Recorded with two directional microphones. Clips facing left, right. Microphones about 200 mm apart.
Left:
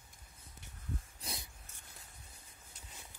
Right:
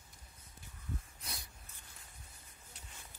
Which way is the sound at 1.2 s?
25° left (ahead or behind).